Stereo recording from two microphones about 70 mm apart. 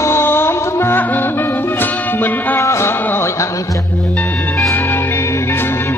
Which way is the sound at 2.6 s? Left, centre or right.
Left.